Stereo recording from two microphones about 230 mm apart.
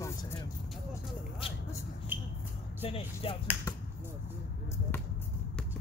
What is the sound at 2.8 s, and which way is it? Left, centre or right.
Speech, left.